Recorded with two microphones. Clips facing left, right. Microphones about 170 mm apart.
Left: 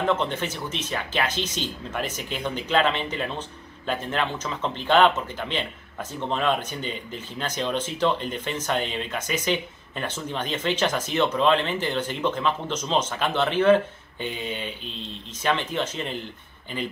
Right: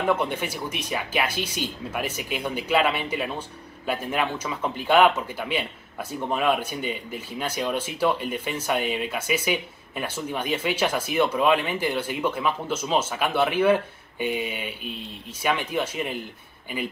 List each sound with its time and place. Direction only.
0.0 s speech: 10° right (ahead or behind)